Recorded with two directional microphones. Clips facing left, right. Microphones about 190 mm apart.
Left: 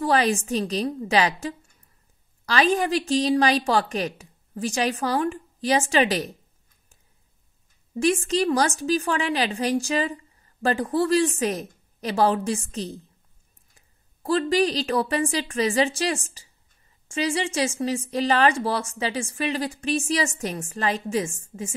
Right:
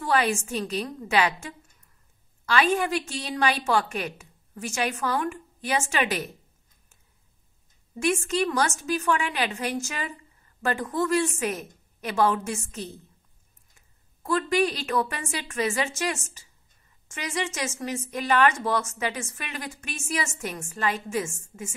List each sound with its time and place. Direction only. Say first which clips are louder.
0.0 s a woman's voice: left 3 dB; 35° left (ahead or behind)
8.0 s a woman's voice: left 3 dB; 35° left (ahead or behind)